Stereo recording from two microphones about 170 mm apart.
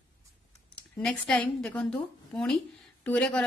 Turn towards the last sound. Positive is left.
turn(degrees=5)  # may be behind; listen again after turning